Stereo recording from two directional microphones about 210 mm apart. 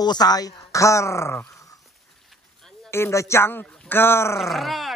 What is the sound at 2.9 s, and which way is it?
Speech, 10° left (ahead or behind).